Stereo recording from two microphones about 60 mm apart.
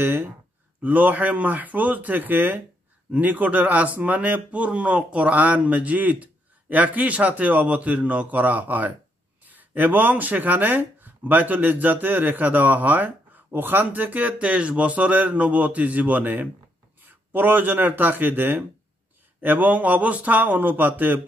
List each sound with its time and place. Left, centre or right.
0.0 s a man's voice: right